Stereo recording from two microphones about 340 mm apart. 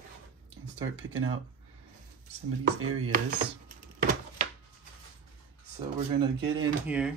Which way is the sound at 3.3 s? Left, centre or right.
Right.